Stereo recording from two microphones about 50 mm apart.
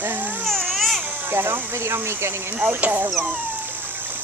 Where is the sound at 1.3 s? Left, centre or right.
Right.